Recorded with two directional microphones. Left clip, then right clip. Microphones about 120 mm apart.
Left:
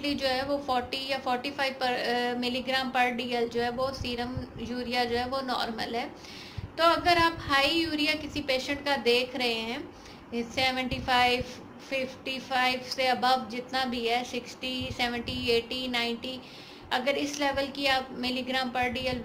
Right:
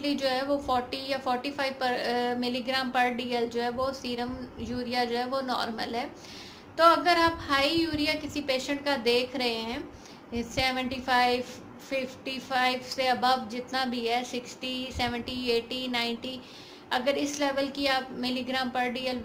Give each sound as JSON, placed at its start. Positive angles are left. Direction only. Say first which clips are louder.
{"t": 0.0, "sound": "a woman's voice", "louder": "right 1 dB", "side_deg": -40}